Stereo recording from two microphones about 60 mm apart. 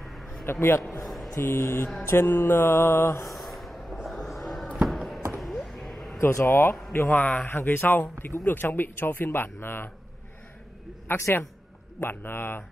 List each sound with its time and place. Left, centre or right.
0.0 s a sound: centre
0.5 s mantra: left
1.0 s a sound: centre
1.3 s mantra: left
3.3 s a sound: centre
4.8 s basketball bounce: centre
6.2 s speech: left
7.4 s speech: left
11.1 s speech: left